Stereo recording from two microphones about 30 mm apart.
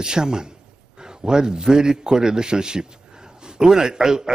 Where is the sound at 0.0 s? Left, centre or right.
Right.